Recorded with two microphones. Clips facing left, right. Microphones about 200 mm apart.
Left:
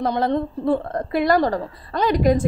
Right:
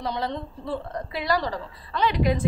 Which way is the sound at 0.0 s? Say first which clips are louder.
Left 9 dB; 50° left (ahead or behind).